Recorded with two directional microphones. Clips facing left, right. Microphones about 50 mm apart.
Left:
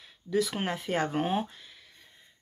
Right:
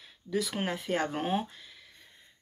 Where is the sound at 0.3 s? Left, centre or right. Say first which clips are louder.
Left 3 dB; centre.